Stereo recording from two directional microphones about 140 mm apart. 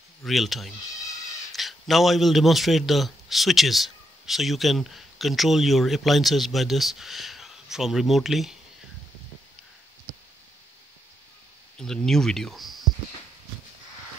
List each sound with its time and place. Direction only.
0.2 s a man's voice: centre (ahead or behind)
11.8 s speech: 5° left (ahead or behind)